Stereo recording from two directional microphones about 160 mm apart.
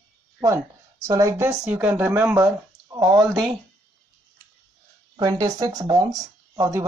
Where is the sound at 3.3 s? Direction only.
Centre (ahead or behind).